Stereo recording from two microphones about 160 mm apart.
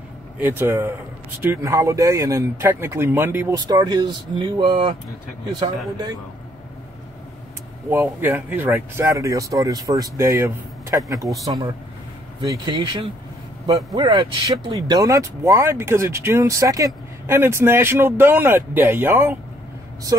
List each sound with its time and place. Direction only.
0.4 s speech: 15° right (ahead or behind)
7.9 s speech: 10° right (ahead or behind)